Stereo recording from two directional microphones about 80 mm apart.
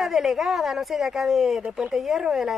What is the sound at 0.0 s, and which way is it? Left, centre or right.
Speech, centre.